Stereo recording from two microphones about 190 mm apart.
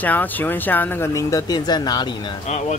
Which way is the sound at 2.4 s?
35° left (ahead or behind).